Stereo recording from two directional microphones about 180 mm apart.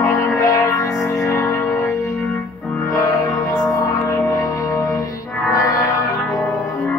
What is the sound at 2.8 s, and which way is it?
Music, 20° left (ahead or behind).